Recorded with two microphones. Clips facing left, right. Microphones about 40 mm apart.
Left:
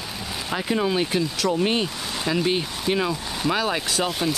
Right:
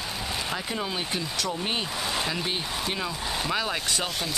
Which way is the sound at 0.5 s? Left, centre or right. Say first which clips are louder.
Left 8 dB; centre.